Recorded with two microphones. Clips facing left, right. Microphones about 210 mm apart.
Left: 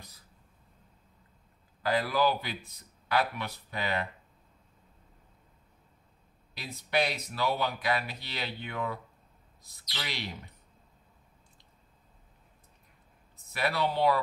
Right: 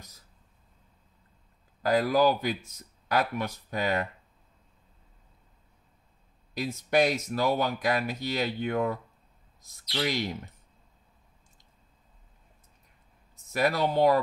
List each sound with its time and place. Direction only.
1.8 s speech: 45° right (ahead or behind)
6.5 s speech: 45° right (ahead or behind)
13.4 s speech: 45° right (ahead or behind)